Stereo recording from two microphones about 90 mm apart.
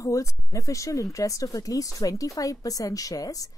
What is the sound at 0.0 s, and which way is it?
Speech, 35° left (ahead or behind).